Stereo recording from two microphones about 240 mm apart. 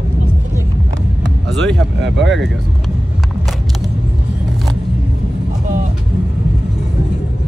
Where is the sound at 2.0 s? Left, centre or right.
Right.